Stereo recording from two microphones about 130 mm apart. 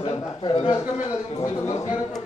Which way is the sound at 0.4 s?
35° left (ahead or behind).